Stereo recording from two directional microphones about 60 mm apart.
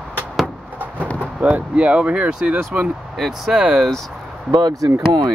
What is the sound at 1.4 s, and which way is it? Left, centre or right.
Speech, right.